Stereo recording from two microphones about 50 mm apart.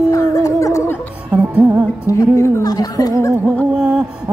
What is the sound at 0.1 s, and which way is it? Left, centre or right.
Music, left.